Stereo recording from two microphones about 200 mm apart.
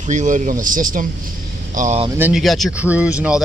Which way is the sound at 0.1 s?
40° right (ahead or behind).